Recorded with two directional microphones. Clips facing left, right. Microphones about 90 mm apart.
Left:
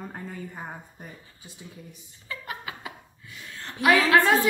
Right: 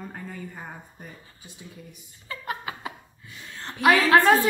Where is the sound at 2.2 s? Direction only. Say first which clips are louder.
Right 3 dB; 40° right (ahead or behind).